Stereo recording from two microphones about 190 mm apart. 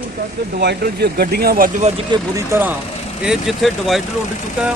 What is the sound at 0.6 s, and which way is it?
Speech, 60° right (ahead or behind).